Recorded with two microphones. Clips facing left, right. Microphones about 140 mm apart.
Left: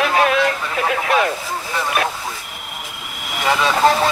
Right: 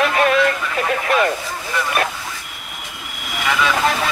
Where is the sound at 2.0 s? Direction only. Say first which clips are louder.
Left 1 dB; centre (ahead or behind).